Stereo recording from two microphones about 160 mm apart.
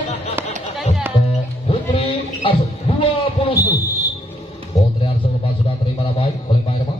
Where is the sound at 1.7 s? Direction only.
35° left (ahead or behind).